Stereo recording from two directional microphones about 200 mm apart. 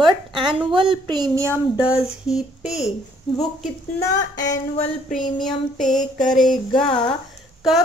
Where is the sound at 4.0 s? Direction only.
15° left (ahead or behind).